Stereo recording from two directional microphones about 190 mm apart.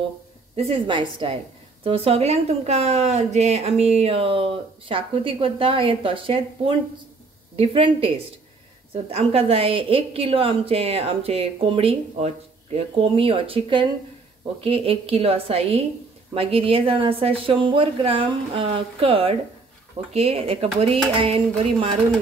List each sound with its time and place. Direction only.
0.6 s speech: 30° right (ahead or behind)